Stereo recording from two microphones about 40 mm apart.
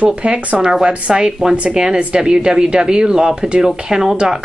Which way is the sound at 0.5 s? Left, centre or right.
Centre.